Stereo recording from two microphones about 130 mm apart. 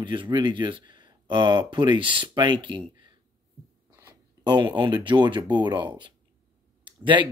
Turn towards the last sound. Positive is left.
turn(degrees=-40)  # may be behind; listen again after turning